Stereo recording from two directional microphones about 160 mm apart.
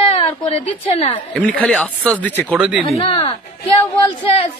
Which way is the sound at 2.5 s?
10° right (ahead or behind).